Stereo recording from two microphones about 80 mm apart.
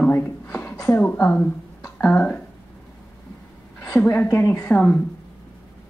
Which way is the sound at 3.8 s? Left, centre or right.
Left.